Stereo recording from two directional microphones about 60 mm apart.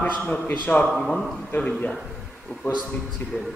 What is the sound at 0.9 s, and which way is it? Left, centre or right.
Speech, centre.